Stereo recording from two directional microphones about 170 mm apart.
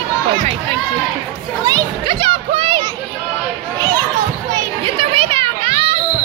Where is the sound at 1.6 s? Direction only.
25° right (ahead or behind).